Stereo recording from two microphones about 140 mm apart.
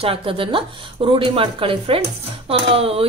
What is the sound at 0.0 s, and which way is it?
A woman's voice, 40° right (ahead or behind).